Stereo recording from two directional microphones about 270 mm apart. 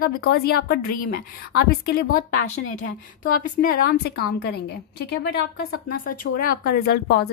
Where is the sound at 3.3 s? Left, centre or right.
Left.